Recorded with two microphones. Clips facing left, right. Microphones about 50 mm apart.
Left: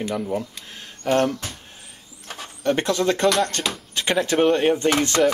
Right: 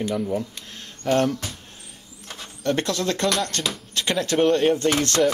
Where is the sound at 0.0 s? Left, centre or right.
Centre.